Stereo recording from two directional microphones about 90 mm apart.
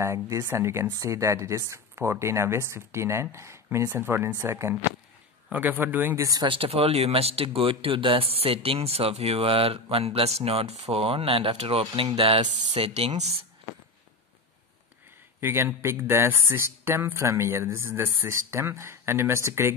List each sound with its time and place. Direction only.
0.0 s speech: 35° right (ahead or behind)
6.4 s speech: 85° right
15.4 s speech: 30° right (ahead or behind)